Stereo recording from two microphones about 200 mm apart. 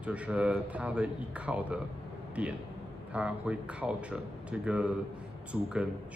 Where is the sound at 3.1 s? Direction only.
5° right (ahead or behind).